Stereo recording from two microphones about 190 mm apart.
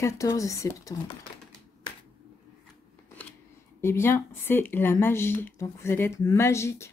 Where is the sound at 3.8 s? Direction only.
15° left (ahead or behind).